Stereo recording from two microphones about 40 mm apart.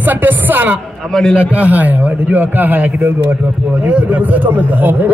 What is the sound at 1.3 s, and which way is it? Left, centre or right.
A man's voice, right.